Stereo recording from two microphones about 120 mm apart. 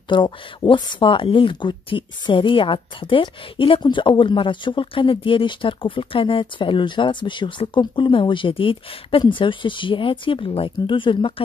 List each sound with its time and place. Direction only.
0.1 s a woman's voice: 40° left (ahead or behind)